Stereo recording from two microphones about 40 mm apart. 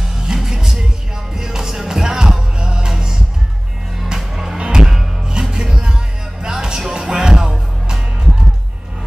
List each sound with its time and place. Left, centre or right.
0.0 s music: centre
4.2 s music: centre
4.6 s music: right